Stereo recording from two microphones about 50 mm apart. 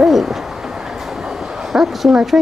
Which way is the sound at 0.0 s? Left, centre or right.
Centre.